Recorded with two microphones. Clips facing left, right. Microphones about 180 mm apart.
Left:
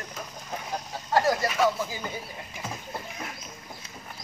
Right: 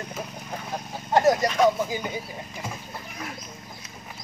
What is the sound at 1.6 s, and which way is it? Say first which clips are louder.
Speech: right 5 dB; 20° right (ahead or behind).